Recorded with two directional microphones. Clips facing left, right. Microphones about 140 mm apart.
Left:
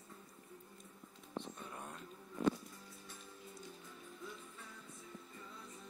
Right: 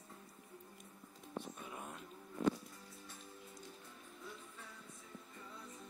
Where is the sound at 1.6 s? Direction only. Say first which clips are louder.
Even; 5° right (ahead or behind).